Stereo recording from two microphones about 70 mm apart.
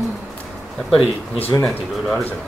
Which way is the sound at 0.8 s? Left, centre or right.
Centre.